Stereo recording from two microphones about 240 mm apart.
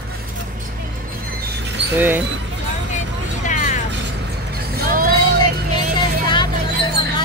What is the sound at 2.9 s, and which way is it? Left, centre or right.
Vehicle, left.